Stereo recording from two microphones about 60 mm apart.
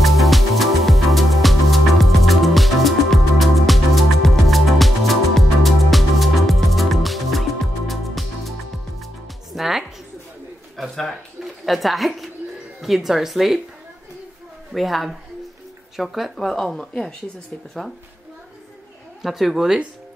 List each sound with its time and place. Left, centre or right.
0.0 s music: centre
10.8 s a sound: centre
12.8 s speech: centre
14.7 s speech: centre
19.2 s speech: centre